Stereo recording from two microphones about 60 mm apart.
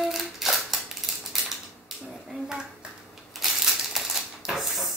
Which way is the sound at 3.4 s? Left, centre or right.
Centre.